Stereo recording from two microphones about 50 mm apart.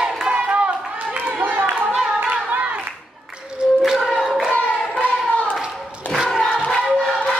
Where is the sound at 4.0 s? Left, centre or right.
Centre.